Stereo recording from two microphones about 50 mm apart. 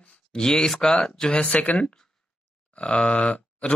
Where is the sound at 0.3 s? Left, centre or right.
Centre.